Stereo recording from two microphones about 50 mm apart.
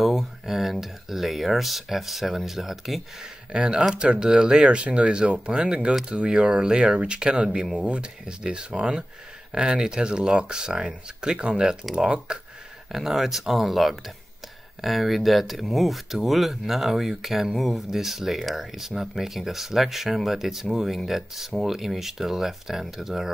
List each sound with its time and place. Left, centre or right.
0.0 s speech: centre
3.5 s speech: centre